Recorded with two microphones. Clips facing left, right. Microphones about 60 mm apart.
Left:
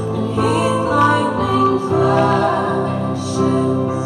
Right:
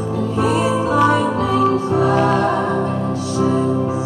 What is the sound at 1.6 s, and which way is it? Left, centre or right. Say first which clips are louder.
Music: left 1 dB; right.